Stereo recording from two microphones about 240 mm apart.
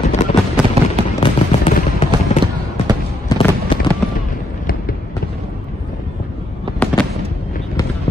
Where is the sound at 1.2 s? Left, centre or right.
Left.